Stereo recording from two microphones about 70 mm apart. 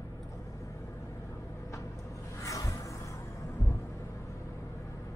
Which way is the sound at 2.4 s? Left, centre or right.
Left.